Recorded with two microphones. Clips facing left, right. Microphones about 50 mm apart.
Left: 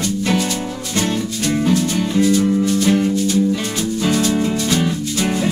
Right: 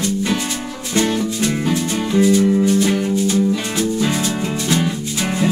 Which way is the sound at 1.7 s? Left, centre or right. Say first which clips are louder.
Left 1 dB; centre.